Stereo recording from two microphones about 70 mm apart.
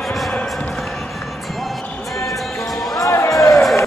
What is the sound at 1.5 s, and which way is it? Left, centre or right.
Basketball bounce, centre.